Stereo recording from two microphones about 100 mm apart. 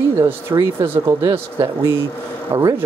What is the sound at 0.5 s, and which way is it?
Speech, 35° right (ahead or behind).